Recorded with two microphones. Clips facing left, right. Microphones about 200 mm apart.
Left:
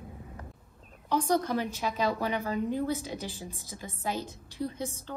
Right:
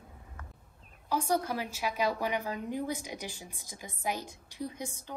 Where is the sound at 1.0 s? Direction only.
10° right (ahead or behind).